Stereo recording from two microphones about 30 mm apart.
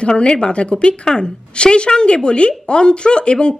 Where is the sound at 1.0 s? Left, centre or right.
Left.